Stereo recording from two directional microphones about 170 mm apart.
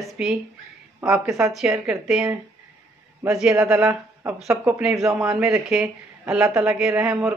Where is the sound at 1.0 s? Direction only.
5° right (ahead or behind).